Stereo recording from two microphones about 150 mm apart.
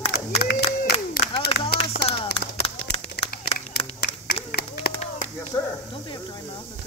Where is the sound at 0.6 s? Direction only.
90° left.